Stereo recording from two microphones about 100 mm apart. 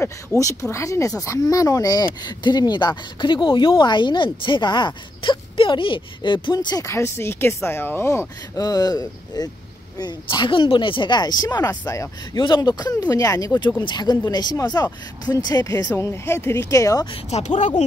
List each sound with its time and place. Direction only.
0.0 s speech: 30° left (ahead or behind); by 6.8 s 45° left (ahead or behind)
6.8 s speech: 25° left (ahead or behind)
8.5 s speech: 40° left (ahead or behind)
15.9 s speech: 25° left (ahead or behind)
17.3 s speech: 90° left